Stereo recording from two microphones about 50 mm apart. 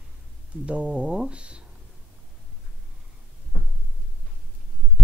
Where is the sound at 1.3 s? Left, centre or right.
Right.